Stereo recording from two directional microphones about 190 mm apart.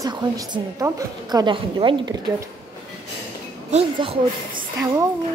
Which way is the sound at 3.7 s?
30° right (ahead or behind).